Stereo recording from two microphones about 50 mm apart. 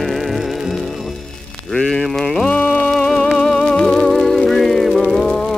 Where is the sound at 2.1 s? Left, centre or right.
Centre.